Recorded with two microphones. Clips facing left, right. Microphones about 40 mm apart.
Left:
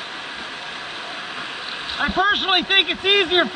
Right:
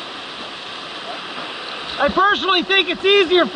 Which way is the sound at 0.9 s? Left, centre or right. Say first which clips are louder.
Right 1 dB; right.